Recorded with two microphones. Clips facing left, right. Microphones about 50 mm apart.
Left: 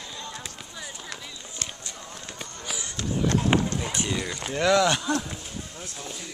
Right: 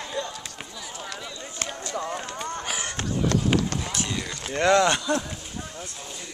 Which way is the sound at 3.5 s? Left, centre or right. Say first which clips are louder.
Left 2 dB; left.